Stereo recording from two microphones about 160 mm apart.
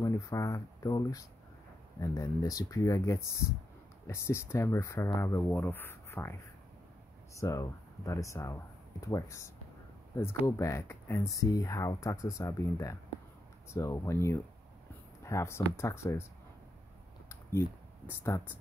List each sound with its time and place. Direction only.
0.0 s speech: 20° left (ahead or behind)
7.3 s speech: 20° left (ahead or behind)
17.3 s a sound: 15° left (ahead or behind)